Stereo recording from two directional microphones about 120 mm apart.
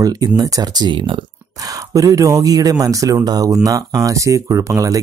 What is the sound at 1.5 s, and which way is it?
Speech, 30° right (ahead or behind).